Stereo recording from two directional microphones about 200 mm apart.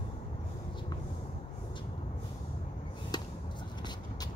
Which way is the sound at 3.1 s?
20° left (ahead or behind).